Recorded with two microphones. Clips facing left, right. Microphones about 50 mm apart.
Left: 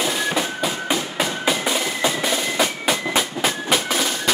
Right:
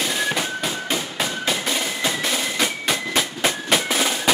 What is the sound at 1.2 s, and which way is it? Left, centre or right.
Music, centre.